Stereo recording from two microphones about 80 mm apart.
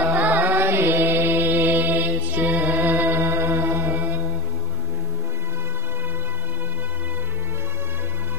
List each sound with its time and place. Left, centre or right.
0.0 s mantra: right